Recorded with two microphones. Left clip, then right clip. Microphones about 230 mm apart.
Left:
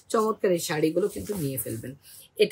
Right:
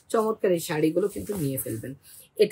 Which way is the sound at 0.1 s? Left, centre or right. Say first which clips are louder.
Even; centre.